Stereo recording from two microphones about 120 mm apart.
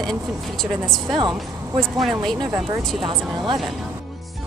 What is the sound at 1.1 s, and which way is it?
Speech, 40° right (ahead or behind).